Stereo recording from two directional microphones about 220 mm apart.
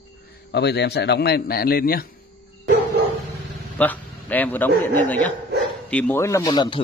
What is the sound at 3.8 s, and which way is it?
A man's voice, 10° left (ahead or behind).